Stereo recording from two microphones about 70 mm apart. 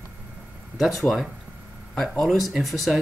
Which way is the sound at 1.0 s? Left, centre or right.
Centre.